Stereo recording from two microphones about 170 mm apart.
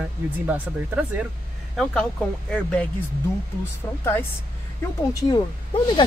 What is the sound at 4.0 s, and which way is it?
A woman's voice, 15° left (ahead or behind).